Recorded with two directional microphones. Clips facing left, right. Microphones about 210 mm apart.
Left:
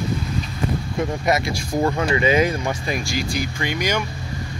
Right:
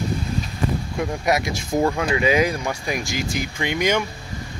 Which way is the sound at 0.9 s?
10° right (ahead or behind).